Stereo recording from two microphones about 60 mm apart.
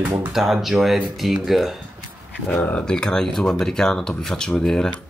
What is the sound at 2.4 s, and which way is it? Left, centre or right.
Speech, left.